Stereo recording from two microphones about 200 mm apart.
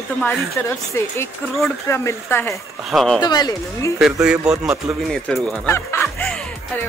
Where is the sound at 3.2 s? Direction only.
20° left (ahead or behind).